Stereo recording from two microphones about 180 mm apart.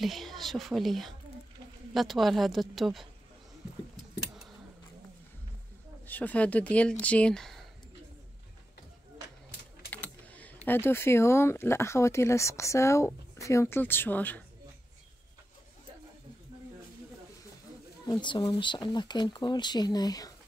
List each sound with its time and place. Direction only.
0.0 s speech: centre (ahead or behind)
6.0 s speech: 10° left (ahead or behind)
10.3 s speech: 10° left (ahead or behind)
18.2 s speech: 25° left (ahead or behind)